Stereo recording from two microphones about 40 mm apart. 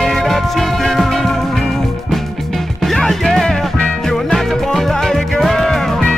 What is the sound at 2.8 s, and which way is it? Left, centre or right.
Music, centre.